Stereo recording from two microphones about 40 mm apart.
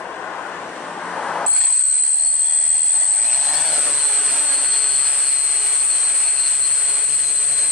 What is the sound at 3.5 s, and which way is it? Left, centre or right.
Vehicle, centre.